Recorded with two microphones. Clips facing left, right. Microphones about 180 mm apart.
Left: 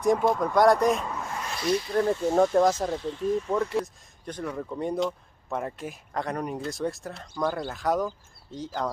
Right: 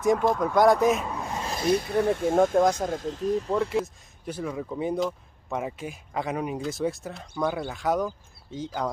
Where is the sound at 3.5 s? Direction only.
Centre (ahead or behind).